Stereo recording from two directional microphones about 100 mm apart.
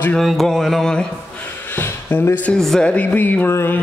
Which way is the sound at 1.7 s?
20° left (ahead or behind).